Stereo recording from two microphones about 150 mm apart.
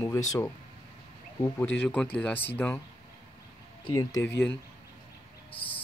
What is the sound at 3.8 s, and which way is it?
Speech, 25° left (ahead or behind).